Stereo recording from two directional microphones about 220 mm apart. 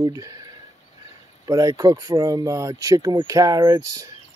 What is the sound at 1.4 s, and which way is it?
Speech, 15° right (ahead or behind).